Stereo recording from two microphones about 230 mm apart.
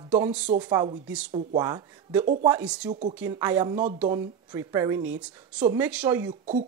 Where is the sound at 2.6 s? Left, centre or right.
Centre.